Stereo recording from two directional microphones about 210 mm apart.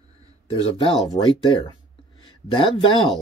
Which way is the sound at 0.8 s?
20° left (ahead or behind).